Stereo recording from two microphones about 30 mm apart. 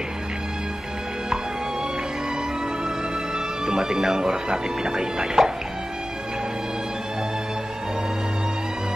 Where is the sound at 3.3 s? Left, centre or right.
Right.